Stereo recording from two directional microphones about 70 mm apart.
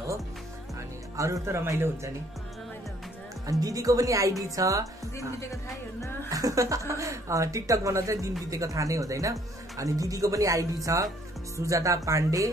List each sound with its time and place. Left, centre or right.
1.1 s speech: right
3.4 s speech: right